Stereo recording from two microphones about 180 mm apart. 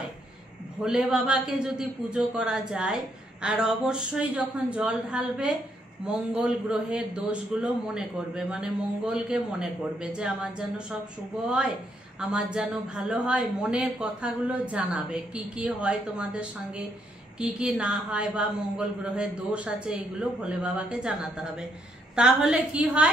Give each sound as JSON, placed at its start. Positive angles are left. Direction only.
{"t": 0.8, "sound": "a man's voice", "side_deg": -5}